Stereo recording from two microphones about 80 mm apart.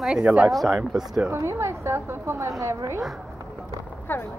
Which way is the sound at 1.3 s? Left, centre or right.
Right.